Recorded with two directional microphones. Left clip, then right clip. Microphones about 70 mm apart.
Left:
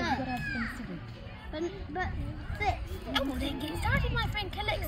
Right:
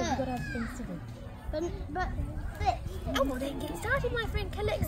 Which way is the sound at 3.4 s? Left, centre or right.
Right.